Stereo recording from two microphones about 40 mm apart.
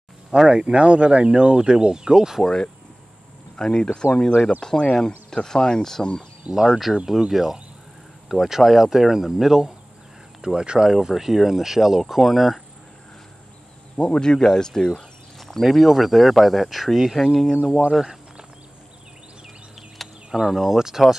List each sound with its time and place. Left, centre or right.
0.5 s speech: centre
2.4 s speech: centre
6.5 s speech: centre
10.4 s speech: right
10.9 s speech: centre
13.9 s speech: left
15.3 s speech: centre
20.2 s speech: centre